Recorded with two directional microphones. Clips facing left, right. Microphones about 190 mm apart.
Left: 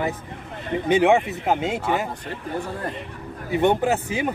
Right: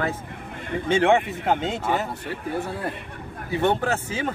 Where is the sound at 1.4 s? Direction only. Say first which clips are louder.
Left 1 dB; 10° left (ahead or behind).